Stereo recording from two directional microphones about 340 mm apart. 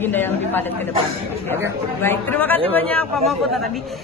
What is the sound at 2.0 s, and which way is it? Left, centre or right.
A man's voice, centre.